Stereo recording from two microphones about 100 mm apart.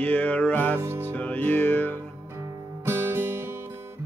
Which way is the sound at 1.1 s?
15° left (ahead or behind).